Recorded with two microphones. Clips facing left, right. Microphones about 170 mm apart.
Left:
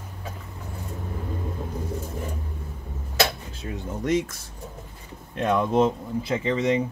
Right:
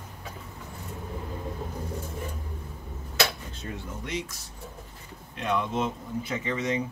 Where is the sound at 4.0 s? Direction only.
50° left (ahead or behind).